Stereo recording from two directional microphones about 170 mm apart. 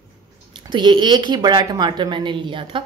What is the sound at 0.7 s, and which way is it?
Speech, 25° right (ahead or behind).